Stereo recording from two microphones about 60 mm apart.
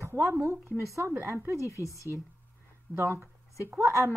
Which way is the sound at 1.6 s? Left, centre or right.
Left.